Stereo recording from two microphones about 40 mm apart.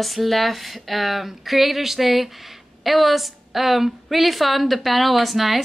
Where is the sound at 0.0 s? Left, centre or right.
Centre.